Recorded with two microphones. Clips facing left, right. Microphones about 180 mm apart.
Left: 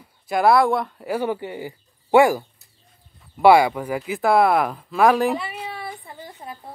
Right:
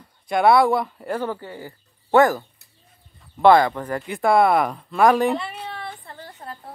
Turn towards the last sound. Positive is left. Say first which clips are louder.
# left 1 dB
turn(degrees=10)  # may be behind; listen again after turning